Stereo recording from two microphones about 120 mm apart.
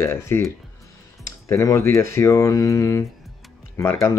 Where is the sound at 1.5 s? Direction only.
25° left (ahead or behind).